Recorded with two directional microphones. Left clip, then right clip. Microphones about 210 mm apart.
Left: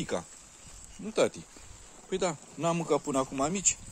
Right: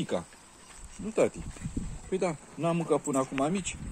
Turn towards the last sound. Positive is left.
turn(degrees=15)  # may be behind; listen again after turning